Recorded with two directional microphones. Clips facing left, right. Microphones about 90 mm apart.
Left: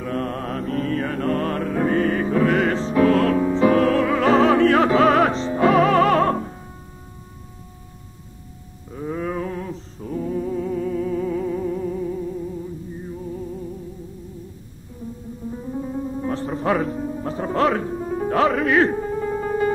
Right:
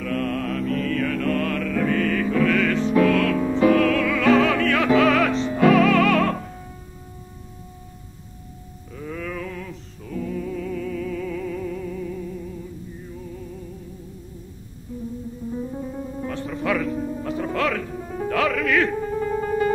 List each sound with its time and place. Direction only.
0.0 s mantra: 30° left (ahead or behind)
8.9 s music: 30° left (ahead or behind)
16.3 s music: 35° left (ahead or behind)